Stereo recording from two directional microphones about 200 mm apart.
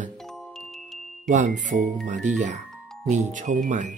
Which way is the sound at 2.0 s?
35° right (ahead or behind).